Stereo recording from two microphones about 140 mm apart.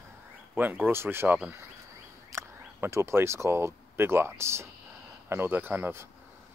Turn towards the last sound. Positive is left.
turn(degrees=-15)  # may be behind; listen again after turning